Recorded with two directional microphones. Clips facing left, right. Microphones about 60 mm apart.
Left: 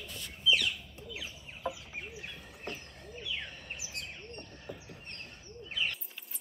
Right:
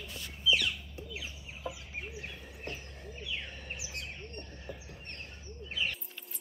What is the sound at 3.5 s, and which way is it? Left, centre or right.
Chirp, centre.